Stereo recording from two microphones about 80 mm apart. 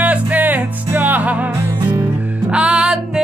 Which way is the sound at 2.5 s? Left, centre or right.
Centre.